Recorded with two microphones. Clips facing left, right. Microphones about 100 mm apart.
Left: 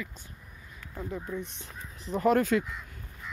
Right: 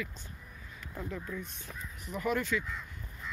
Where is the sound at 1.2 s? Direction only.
25° left (ahead or behind); by 2.6 s 50° left (ahead or behind).